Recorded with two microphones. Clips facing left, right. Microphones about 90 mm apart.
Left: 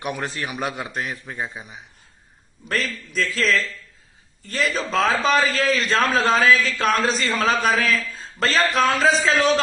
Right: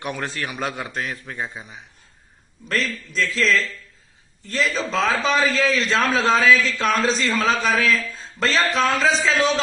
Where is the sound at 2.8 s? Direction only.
55° left (ahead or behind).